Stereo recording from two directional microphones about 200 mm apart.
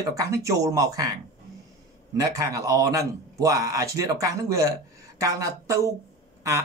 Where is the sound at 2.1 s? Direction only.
15° right (ahead or behind).